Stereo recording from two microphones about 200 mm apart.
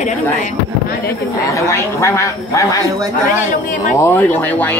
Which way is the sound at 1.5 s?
15° left (ahead or behind).